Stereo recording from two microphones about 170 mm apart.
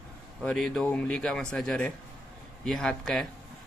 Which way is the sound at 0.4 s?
5° left (ahead or behind).